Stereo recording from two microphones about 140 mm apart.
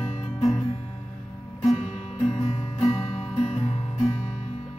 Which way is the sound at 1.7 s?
50° left (ahead or behind).